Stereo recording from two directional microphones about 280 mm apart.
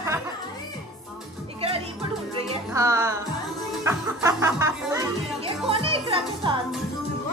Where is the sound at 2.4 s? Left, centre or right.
Centre.